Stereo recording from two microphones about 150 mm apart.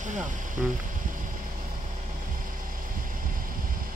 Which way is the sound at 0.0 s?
55° right (ahead or behind).